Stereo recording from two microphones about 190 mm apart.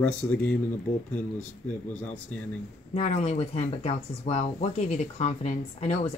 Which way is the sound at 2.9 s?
35° left (ahead or behind).